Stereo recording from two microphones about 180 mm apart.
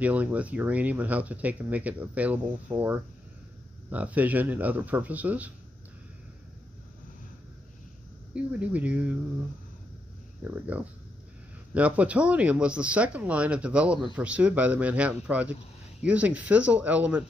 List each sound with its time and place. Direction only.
0.0 s speech: 10° right (ahead or behind)
8.4 s speech: 5° right (ahead or behind)
10.4 s speech: 10° right (ahead or behind)